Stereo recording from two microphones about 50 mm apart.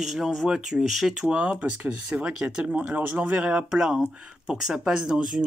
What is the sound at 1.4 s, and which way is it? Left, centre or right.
Speech, right.